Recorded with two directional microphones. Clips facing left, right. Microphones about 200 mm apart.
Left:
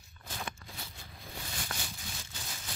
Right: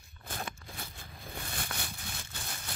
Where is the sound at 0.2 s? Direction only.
55° right (ahead or behind).